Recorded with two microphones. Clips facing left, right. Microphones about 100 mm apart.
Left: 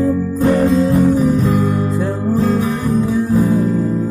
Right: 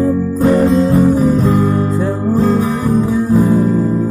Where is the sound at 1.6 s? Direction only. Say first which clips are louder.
Right 3 dB; 15° right (ahead or behind).